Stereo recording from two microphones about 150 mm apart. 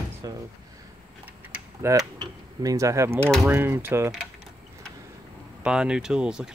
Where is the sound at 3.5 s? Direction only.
15° right (ahead or behind).